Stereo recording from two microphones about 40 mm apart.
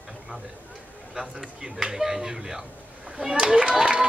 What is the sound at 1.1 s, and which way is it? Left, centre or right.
A man's voice, centre.